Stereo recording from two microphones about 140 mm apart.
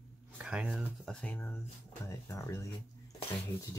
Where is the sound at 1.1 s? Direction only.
10° left (ahead or behind).